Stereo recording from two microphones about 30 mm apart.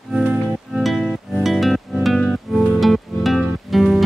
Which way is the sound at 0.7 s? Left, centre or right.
Centre.